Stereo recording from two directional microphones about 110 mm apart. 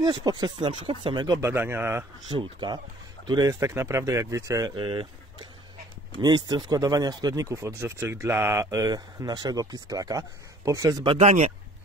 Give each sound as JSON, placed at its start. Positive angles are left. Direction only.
{"t": 0.0, "sound": "speech", "side_deg": -40}
{"t": 0.7, "sound": "speech", "side_deg": -55}
{"t": 1.4, "sound": "speech", "side_deg": -20}
{"t": 2.3, "sound": "speech", "side_deg": -40}
{"t": 4.7, "sound": "speech", "side_deg": -50}
{"t": 6.2, "sound": "speech", "side_deg": -40}
{"t": 11.1, "sound": "speech", "side_deg": -90}